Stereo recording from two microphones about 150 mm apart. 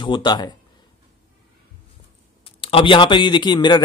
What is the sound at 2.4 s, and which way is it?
Speech, 35° left (ahead or behind).